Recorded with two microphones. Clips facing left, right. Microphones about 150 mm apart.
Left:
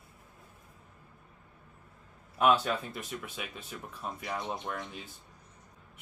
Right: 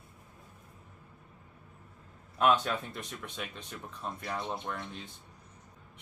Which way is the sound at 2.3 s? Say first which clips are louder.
Left 1 dB; 5° left (ahead or behind).